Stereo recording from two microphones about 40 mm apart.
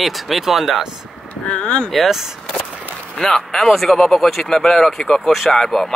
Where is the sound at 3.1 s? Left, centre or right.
Centre.